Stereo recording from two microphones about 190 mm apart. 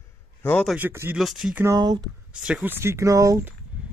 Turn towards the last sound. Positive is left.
turn(degrees=-15)  # may be behind; listen again after turning